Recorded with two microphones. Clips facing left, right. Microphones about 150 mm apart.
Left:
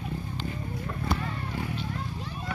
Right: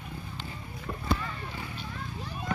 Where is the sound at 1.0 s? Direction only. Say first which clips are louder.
Even; 55° left (ahead or behind).